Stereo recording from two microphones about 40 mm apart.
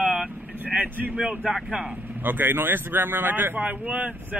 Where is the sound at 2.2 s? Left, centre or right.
Right.